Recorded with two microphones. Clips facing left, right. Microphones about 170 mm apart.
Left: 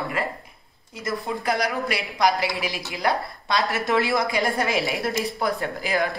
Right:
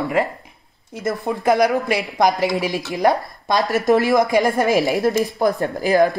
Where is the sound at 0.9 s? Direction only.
55° right (ahead or behind).